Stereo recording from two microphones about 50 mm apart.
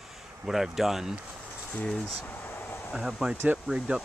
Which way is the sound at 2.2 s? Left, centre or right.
Left.